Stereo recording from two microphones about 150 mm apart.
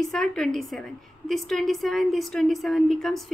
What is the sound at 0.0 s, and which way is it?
A woman's voice, 5° left (ahead or behind).